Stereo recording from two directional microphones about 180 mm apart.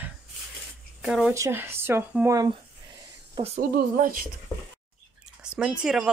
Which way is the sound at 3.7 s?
50° right (ahead or behind).